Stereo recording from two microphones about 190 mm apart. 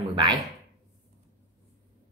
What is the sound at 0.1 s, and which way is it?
Speech, 25° right (ahead or behind).